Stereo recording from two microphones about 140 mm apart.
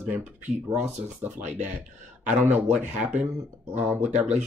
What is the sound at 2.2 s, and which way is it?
Speech, 10° right (ahead or behind).